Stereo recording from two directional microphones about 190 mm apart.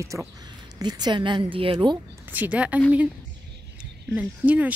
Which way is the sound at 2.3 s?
10° right (ahead or behind).